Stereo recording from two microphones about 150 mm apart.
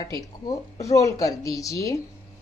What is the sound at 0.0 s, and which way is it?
Speech, 25° left (ahead or behind).